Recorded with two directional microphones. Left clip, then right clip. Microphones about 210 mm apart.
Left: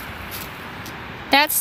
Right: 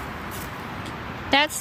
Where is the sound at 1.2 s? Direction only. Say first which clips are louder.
Left 4 dB; 30° left (ahead or behind).